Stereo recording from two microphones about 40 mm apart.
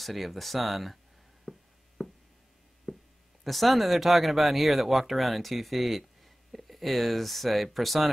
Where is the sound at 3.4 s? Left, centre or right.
Centre.